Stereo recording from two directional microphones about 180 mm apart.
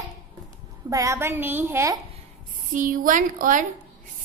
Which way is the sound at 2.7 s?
45° right (ahead or behind).